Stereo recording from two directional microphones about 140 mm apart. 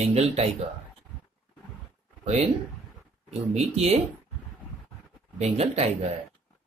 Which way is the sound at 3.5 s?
50° right (ahead or behind).